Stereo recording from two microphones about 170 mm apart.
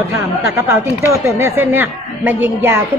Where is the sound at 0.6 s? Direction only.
15° right (ahead or behind).